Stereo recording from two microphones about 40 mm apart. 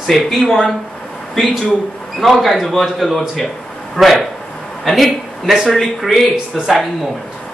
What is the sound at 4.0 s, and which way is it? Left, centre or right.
Speech, centre.